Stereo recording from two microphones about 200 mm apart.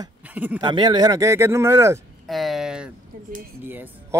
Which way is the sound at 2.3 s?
Centre (ahead or behind).